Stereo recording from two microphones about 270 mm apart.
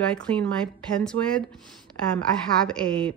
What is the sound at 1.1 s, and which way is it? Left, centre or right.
Speech, right.